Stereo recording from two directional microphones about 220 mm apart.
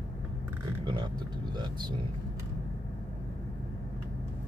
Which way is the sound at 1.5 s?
20° right (ahead or behind).